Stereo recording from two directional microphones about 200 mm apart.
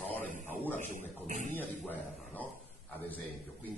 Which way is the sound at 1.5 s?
10° left (ahead or behind).